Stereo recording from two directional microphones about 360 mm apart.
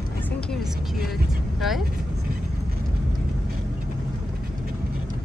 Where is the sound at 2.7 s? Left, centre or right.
Right.